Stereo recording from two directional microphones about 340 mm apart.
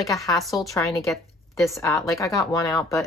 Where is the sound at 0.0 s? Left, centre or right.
Centre.